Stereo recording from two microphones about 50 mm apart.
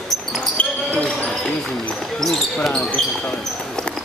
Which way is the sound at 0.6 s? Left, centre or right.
Left.